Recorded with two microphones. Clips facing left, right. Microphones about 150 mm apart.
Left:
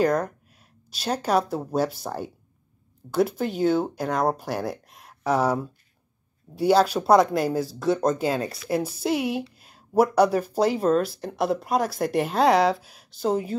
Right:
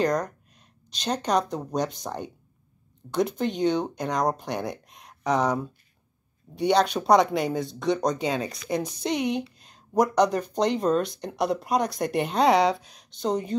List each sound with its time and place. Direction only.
0.0 s speech: 5° left (ahead or behind)